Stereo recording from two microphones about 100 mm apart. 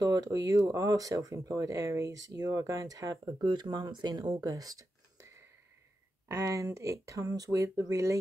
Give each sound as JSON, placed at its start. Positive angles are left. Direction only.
{"t": 0.0, "sound": "speech", "side_deg": -40}
{"t": 6.2, "sound": "speech", "side_deg": -30}